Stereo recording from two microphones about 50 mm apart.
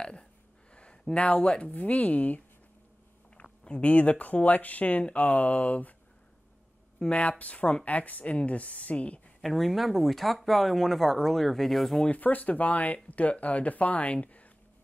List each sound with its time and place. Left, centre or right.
0.0 s speech: centre
3.6 s speech: left
7.1 s speech: left
9.4 s speech: centre
12.1 s speech: left